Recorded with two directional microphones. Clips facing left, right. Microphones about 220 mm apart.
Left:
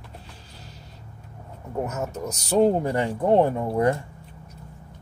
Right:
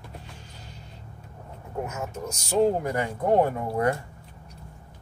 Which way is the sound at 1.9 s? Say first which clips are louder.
Left 3 dB; 35° left (ahead or behind).